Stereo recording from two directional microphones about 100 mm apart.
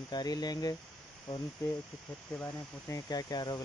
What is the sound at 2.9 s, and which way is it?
Speech, 40° left (ahead or behind).